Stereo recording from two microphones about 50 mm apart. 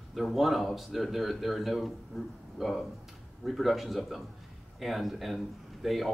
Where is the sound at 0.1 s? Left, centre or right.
Centre.